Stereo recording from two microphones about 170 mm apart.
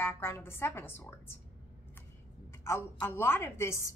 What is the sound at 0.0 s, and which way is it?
A woman's voice, 15° left (ahead or behind).